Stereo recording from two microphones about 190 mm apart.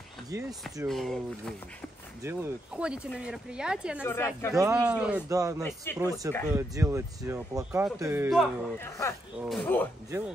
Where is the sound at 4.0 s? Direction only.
10° left (ahead or behind).